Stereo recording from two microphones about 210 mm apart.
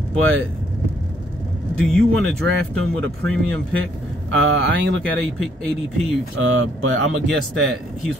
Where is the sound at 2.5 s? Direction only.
60° right (ahead or behind).